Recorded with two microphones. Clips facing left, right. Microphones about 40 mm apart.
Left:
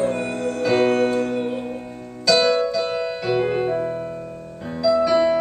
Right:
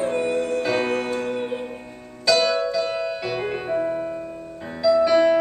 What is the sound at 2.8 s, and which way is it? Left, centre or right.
Music, centre.